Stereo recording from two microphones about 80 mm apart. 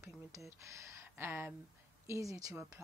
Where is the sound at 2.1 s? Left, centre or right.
Right.